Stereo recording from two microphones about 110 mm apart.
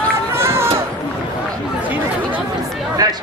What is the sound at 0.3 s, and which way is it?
Run, 25° right (ahead or behind).